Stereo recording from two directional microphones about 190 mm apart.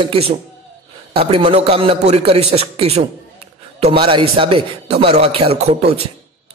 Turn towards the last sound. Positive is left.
turn(degrees=-30)  # may be behind; listen again after turning